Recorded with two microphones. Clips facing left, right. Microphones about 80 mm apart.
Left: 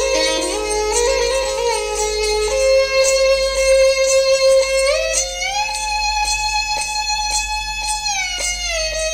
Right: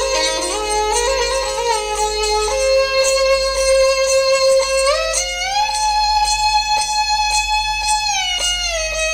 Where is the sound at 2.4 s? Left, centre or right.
Right.